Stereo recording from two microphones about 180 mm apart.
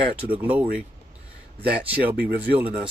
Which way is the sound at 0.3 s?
5° right (ahead or behind).